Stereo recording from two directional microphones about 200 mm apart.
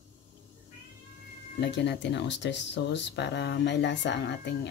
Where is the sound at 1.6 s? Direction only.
60° left (ahead or behind).